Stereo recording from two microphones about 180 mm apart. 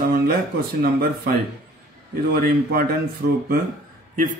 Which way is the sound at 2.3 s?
55° right (ahead or behind).